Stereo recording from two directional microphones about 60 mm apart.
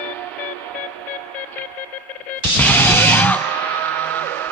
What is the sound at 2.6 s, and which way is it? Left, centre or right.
Music, left.